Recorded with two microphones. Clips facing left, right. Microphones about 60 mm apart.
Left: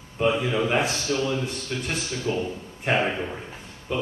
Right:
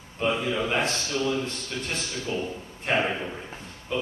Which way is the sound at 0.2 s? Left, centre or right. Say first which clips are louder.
Left 3 dB; centre.